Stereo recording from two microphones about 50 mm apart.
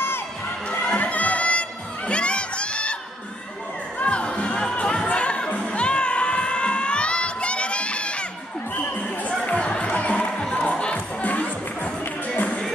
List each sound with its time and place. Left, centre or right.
0.7 s crowd: left
4.0 s music: left
9.5 s music: left